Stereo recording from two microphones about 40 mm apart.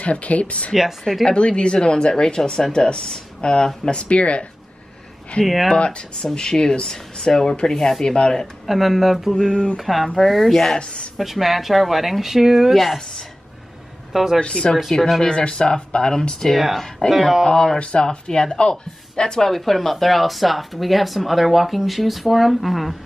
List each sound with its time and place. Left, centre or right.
0.0 s speech: left
5.4 s speech: centre
5.7 s speech: left
8.6 s speech: centre
9.5 s speech: left
9.8 s speech: centre
10.8 s speech: left
11.1 s speech: centre
14.1 s speech: centre
14.4 s speech: left
16.5 s speech: centre
18.0 s speech: centre
19.5 s speech: centre